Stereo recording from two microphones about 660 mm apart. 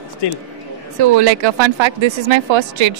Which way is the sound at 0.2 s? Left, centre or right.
Left.